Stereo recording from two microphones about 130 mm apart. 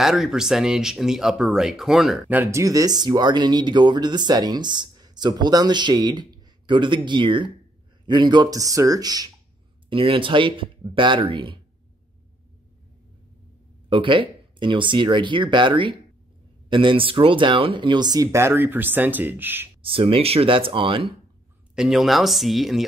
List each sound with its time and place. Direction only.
0.0 s speech: 5° right (ahead or behind)
2.3 s speech: 20° right (ahead or behind)
9.8 s speech: 40° right (ahead or behind)
13.8 s speech: 40° right (ahead or behind); by 19.7 s 15° right (ahead or behind)
19.8 s speech: 45° right (ahead or behind)
21.7 s speech: centre (ahead or behind)